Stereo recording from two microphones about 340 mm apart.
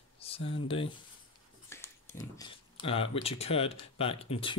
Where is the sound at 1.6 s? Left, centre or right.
Centre.